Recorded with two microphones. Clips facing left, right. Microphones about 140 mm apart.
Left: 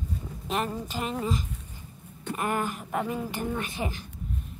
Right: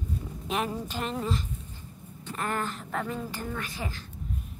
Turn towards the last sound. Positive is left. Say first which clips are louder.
# left 4 dB
turn(degrees=20)  # may be behind; listen again after turning